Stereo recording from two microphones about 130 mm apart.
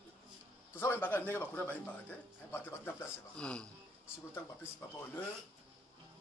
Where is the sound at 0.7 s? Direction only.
15° left (ahead or behind).